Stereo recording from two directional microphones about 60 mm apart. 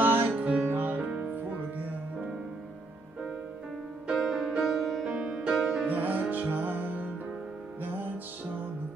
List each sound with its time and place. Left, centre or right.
0.0 s music: right
0.3 s music: right
4.1 s music: centre
5.9 s music: right